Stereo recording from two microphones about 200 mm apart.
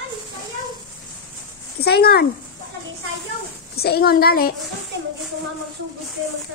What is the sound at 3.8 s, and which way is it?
Speech, 50° left (ahead or behind).